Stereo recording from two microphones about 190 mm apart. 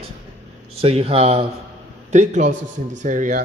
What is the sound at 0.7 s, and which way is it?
A man's voice, 30° right (ahead or behind).